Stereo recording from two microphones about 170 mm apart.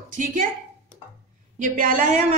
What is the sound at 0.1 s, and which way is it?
Speech, 50° right (ahead or behind).